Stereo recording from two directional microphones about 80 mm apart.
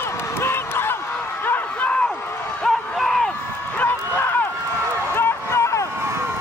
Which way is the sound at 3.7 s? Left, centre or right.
Left.